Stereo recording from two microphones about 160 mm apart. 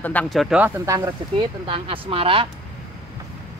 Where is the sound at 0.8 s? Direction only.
20° right (ahead or behind).